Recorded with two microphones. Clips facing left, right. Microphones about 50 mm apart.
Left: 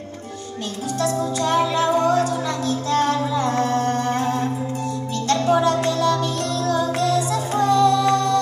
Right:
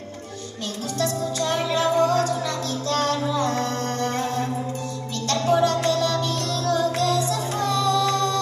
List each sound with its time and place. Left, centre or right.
0.9 s music: left